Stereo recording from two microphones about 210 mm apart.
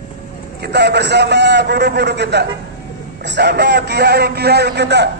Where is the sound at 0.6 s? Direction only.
55° right (ahead or behind).